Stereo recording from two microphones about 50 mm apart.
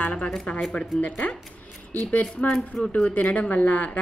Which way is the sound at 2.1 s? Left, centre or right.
Left.